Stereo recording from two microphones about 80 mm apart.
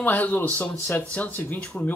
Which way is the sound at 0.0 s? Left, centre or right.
Left.